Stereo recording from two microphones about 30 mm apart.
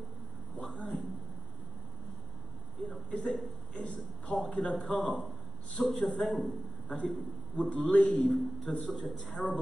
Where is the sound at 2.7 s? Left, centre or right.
Centre.